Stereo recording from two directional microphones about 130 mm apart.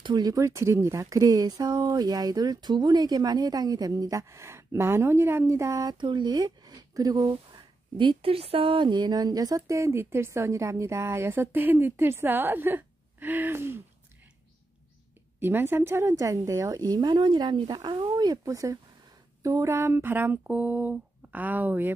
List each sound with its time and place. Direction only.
0.0 s speech: 30° right (ahead or behind)
15.4 s speech: 15° right (ahead or behind)